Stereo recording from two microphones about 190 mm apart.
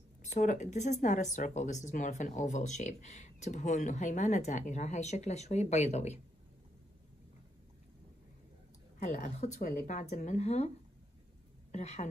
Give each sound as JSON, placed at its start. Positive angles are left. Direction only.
{"t": 0.2, "sound": "speech", "side_deg": 40}
{"t": 9.0, "sound": "speech", "side_deg": 45}
{"t": 11.7, "sound": "speech", "side_deg": 35}